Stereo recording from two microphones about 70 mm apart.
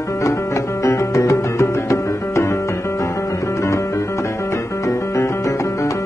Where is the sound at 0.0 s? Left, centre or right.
Left.